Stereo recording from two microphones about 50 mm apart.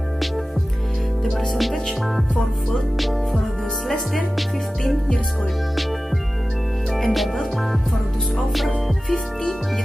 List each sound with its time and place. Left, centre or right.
1.6 s speech: centre
6.9 s speech: centre
8.5 s speech: centre
9.1 s music: centre